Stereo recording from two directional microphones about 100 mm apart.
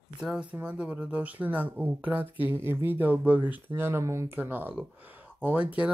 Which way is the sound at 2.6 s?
25° right (ahead or behind).